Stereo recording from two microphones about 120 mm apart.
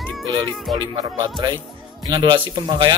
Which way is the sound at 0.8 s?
40° right (ahead or behind).